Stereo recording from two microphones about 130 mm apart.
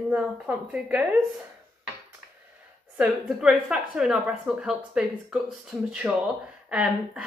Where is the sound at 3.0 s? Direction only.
5° right (ahead or behind).